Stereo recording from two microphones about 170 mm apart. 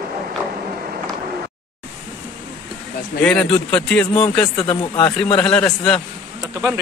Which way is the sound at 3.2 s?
5° left (ahead or behind).